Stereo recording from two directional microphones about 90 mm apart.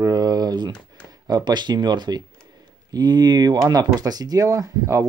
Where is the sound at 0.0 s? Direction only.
45° right (ahead or behind).